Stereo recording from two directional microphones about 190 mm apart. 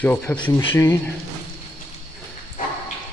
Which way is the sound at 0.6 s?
20° left (ahead or behind).